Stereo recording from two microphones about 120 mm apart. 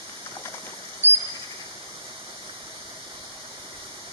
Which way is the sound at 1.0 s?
60° right (ahead or behind).